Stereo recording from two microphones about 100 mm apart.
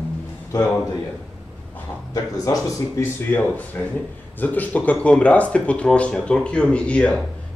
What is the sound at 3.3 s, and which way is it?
A man's voice, 20° left (ahead or behind).